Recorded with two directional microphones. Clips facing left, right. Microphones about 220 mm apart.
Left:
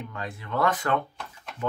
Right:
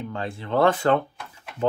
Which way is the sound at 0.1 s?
30° right (ahead or behind).